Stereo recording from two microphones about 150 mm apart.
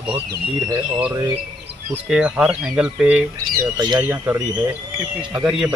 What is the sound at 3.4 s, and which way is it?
Speech, 30° right (ahead or behind).